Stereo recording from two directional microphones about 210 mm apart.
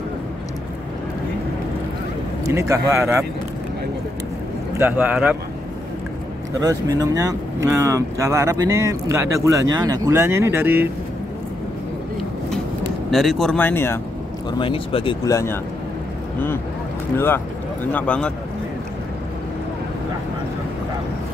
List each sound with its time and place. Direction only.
2.4 s speech: 15° right (ahead or behind)
4.7 s speech: 10° right (ahead or behind)
6.6 s speech: 15° right (ahead or behind)
13.1 s speech: centre (ahead or behind)
14.6 s speech: 25° left (ahead or behind)
15.2 s speech: 15° left (ahead or behind)
17.9 s speech: 5° left (ahead or behind)